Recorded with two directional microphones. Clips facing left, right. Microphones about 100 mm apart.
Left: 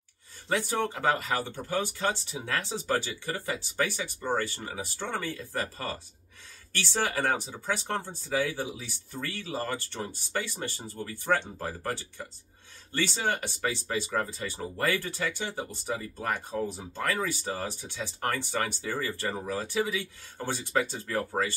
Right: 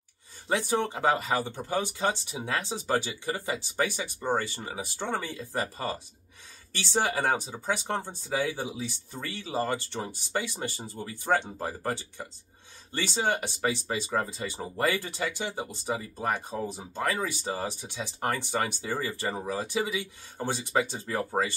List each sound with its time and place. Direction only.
0.5 s speech: 20° right (ahead or behind)